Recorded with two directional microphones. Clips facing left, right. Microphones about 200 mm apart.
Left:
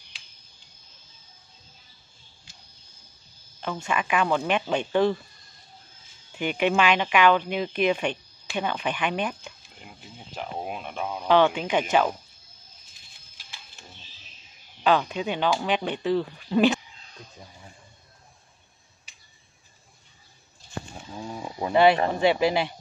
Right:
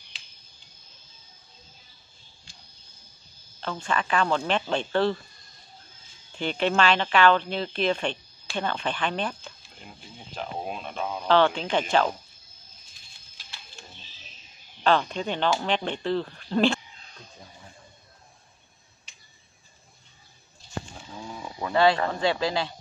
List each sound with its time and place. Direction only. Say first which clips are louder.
3.6 s a woman's voice: left 1 dB; 10° left (ahead or behind)
6.3 s a woman's voice: left 1 dB; 10° left (ahead or behind)
14.8 s a woman's voice: left 1 dB; 5° left (ahead or behind)
21.2 s speech: left 3 dB; 20° left (ahead or behind)